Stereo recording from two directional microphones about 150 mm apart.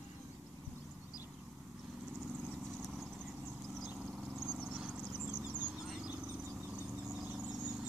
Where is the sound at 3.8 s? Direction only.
5° right (ahead or behind).